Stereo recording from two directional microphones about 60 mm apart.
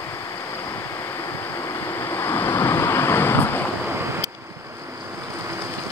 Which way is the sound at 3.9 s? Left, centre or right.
Right.